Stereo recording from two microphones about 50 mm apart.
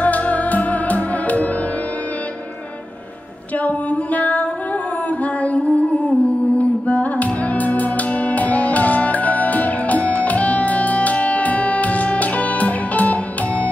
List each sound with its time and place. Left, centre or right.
0.0 s music: left
3.5 s music: left